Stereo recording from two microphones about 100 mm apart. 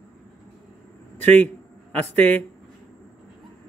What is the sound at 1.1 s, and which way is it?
Speech, 15° left (ahead or behind).